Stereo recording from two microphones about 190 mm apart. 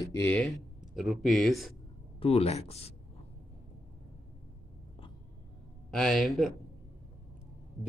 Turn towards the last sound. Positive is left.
turn(degrees=0)  # may be behind; listen again after turning